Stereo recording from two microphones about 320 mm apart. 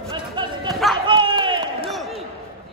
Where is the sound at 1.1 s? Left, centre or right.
Centre.